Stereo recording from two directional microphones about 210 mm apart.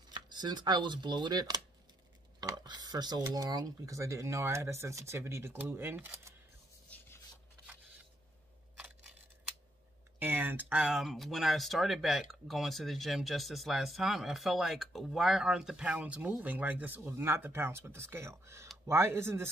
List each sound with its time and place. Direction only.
0.1 s speech: 20° right (ahead or behind)
8.7 s crushing: 5° right (ahead or behind)
10.1 s speech: 10° right (ahead or behind)